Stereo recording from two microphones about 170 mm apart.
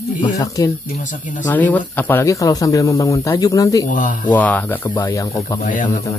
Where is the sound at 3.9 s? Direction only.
50° left (ahead or behind).